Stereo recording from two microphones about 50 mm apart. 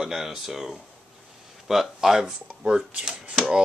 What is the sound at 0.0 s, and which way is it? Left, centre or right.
Speech, centre.